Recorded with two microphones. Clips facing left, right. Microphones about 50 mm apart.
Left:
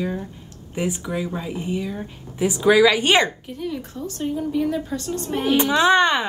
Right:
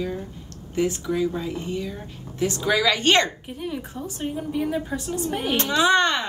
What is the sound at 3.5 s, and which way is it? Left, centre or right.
A woman's voice, centre.